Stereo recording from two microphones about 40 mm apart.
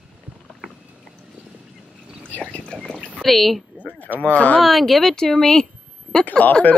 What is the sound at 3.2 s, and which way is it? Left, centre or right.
Speech, centre.